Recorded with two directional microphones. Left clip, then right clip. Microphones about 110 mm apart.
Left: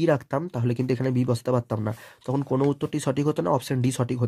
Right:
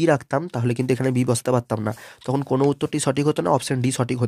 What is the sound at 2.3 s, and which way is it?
Speech, 25° right (ahead or behind).